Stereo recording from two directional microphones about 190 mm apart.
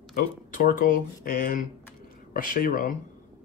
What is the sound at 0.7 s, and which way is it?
Speech, 45° left (ahead or behind).